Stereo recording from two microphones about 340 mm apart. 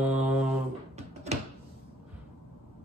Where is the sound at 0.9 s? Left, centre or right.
Centre.